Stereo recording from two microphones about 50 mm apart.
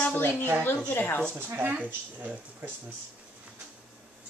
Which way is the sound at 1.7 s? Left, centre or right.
Right.